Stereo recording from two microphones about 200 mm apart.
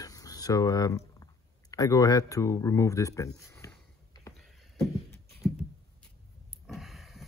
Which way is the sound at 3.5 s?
15° left (ahead or behind).